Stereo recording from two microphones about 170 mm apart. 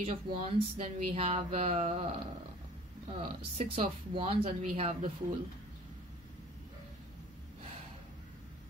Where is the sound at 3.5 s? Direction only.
35° right (ahead or behind).